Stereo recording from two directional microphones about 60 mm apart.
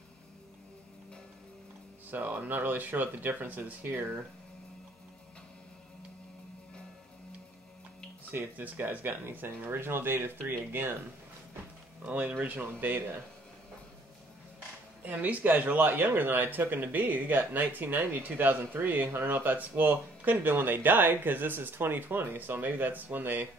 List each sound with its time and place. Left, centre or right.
2.0 s speech: right
8.3 s speech: right
12.0 s speech: right
15.0 s speech: right